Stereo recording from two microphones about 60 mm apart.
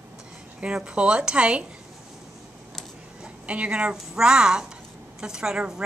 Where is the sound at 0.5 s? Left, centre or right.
Centre.